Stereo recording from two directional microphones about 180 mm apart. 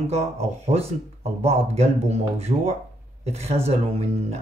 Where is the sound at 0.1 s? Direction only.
35° right (ahead or behind).